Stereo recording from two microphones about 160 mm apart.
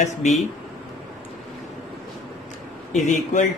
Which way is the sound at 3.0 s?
50° left (ahead or behind).